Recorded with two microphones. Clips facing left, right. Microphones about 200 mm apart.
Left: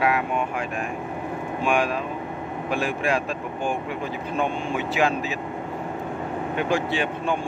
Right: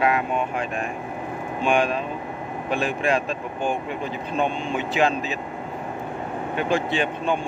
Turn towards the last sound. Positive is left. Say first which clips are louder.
# right 1 dB
turn(degrees=10)  # may be behind; listen again after turning